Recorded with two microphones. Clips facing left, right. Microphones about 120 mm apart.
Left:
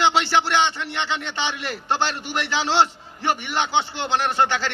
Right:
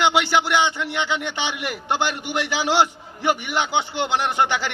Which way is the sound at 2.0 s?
15° right (ahead or behind).